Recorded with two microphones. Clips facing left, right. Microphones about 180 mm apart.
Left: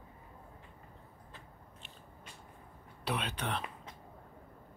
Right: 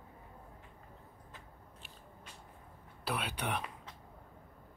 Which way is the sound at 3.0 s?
5° right (ahead or behind).